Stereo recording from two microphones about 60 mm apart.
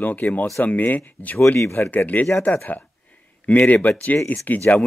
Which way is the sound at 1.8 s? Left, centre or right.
Left.